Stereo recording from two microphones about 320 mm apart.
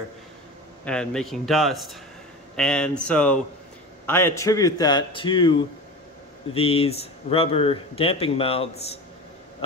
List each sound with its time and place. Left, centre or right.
0.8 s a man's voice: centre